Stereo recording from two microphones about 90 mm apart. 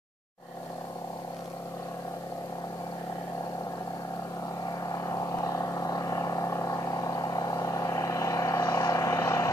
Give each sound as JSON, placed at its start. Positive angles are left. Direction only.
{"t": 4.6, "sound": "vehicle", "side_deg": 45}